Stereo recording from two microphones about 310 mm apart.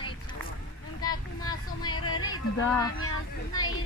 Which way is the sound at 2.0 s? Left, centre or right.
Left.